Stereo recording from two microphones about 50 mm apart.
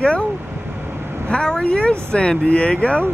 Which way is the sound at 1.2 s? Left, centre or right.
Left.